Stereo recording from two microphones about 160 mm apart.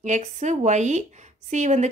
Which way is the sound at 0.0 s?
45° right (ahead or behind).